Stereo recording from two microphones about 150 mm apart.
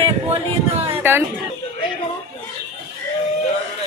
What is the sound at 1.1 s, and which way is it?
Speech, 15° right (ahead or behind).